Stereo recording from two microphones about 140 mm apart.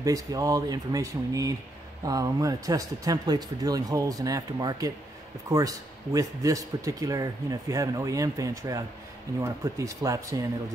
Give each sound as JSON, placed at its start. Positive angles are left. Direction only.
{"t": 0.0, "sound": "speech", "side_deg": -25}